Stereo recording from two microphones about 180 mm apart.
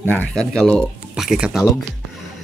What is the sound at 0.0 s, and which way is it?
Speech, 10° left (ahead or behind).